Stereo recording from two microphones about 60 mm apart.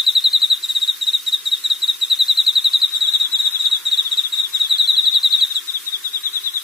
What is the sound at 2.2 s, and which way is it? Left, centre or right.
Bird vocalization, centre.